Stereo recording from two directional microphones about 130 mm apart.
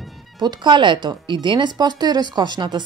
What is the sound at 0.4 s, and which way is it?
A woman's voice, 35° right (ahead or behind).